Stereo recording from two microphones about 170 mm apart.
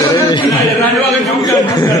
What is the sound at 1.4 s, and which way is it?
Speech, 20° left (ahead or behind).